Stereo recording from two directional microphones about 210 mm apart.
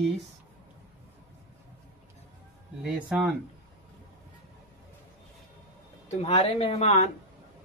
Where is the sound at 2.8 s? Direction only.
5° right (ahead or behind).